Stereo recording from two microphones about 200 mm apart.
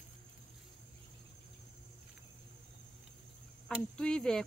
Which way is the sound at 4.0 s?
5° left (ahead or behind).